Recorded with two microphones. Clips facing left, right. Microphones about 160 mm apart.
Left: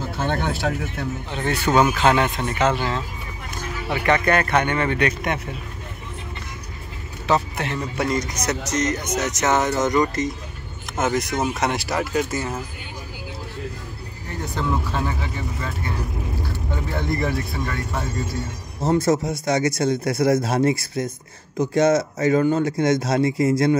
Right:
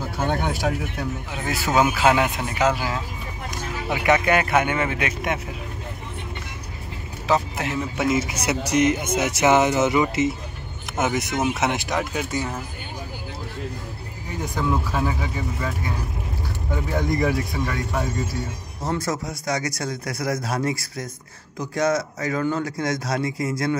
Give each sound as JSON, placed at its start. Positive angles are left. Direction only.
{"t": 0.2, "sound": "speech", "side_deg": -10}
{"t": 7.2, "sound": "speech", "side_deg": -5}
{"t": 14.4, "sound": "speech", "side_deg": -10}
{"t": 16.9, "sound": "speech", "side_deg": -15}
{"t": 18.8, "sound": "speech", "side_deg": 25}